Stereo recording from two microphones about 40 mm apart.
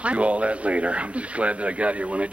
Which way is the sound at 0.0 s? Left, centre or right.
Right.